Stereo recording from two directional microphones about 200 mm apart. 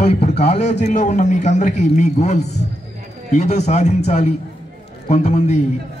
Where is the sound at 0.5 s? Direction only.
35° left (ahead or behind).